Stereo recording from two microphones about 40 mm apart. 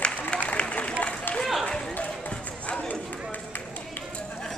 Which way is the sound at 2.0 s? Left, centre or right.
Left.